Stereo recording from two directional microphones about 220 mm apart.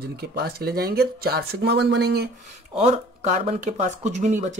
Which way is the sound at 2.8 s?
30° right (ahead or behind).